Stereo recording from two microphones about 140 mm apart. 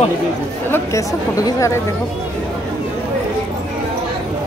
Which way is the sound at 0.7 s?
20° left (ahead or behind).